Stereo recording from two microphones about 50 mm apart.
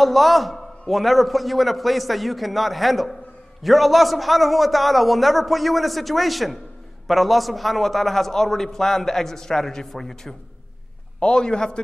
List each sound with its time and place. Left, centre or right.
0.0 s a man's voice: centre